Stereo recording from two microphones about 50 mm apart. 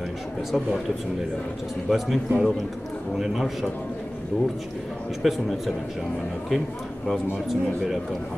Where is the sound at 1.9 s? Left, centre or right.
Centre.